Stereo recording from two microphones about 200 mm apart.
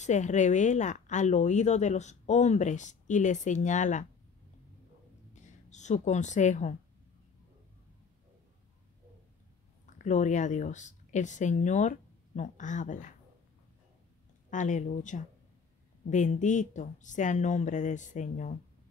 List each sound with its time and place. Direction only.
0.0 s speech: 35° left (ahead or behind)
5.3 s a sound: 35° left (ahead or behind)
9.9 s speech: 40° left (ahead or behind)
14.5 s speech: 40° left (ahead or behind)